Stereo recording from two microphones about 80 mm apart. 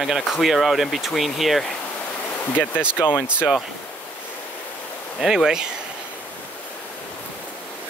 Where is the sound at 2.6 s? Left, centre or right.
Left.